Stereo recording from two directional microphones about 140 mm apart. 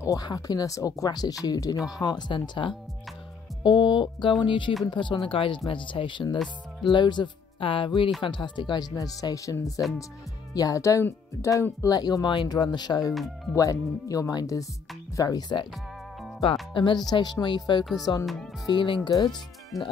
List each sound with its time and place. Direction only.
0.0 s speech: 25° left (ahead or behind)
6.3 s speech: centre (ahead or behind)
6.9 s speech: 30° left (ahead or behind)
13.1 s speech: centre (ahead or behind)
13.6 s speech: 25° left (ahead or behind)
16.7 s speech: 35° left (ahead or behind)